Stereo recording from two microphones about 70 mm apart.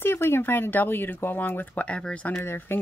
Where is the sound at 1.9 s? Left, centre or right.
Centre.